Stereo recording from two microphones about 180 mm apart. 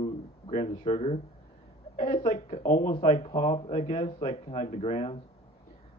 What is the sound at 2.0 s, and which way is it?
Speech, 40° left (ahead or behind).